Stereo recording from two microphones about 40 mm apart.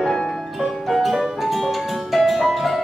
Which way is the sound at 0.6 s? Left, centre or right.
Centre.